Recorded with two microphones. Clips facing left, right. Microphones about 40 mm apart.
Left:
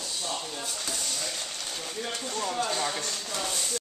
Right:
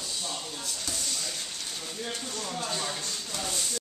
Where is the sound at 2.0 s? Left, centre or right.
Left.